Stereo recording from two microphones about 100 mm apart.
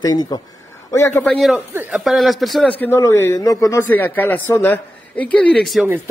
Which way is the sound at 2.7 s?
15° left (ahead or behind).